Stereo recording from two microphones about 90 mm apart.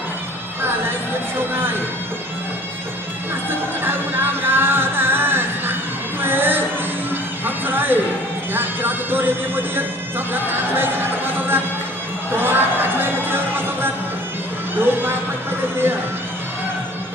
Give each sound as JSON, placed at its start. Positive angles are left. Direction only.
{"t": 0.6, "sound": "music", "side_deg": -25}
{"t": 1.5, "sound": "speech", "side_deg": -25}
{"t": 3.4, "sound": "music", "side_deg": -25}
{"t": 6.2, "sound": "a sound", "side_deg": -25}
{"t": 7.4, "sound": "music", "side_deg": -20}